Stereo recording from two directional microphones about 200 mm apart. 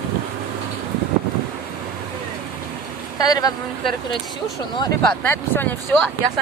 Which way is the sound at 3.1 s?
20° left (ahead or behind).